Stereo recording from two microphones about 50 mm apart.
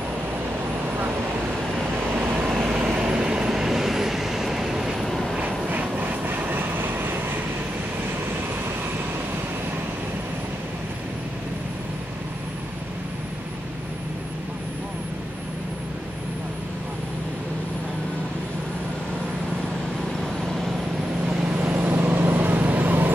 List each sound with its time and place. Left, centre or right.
2.1 s vehicle: right
2.8 s vehicle: centre
5.4 s vehicle: right
21.3 s vehicle: right
21.6 s vehicle: right